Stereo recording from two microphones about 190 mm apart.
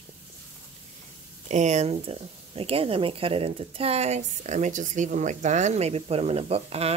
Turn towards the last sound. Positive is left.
turn(degrees=-30)  # may be behind; listen again after turning